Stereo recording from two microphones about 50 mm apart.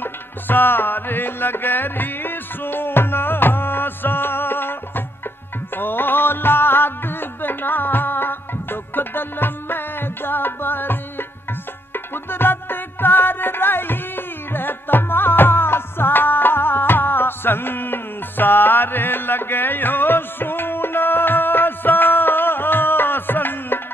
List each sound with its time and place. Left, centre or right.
0.0 s music: left